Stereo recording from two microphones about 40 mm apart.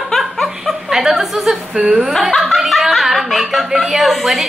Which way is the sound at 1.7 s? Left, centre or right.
Right.